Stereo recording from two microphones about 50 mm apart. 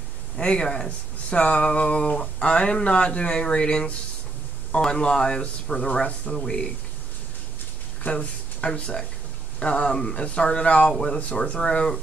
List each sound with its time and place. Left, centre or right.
0.4 s speech: centre
8.0 s speech: left
10.9 s speech: centre